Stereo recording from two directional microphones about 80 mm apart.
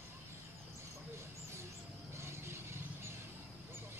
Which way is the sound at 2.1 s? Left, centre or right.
Right.